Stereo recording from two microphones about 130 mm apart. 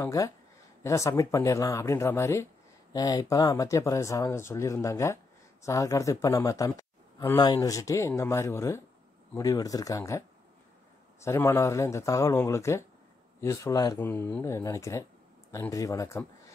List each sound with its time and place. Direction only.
0.0 s speech: 25° left (ahead or behind)